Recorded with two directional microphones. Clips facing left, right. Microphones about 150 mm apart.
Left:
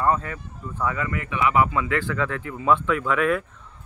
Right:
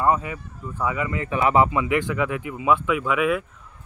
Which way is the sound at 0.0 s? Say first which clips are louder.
Right 1 dB; 10° right (ahead or behind).